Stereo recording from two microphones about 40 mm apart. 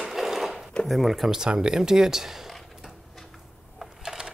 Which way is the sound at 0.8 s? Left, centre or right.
Centre.